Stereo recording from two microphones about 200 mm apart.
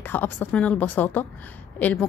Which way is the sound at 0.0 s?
10° left (ahead or behind).